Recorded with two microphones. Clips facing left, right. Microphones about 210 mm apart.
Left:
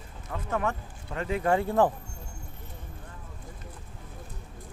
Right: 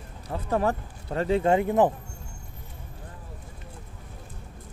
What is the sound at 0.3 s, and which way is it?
Speech, 35° right (ahead or behind).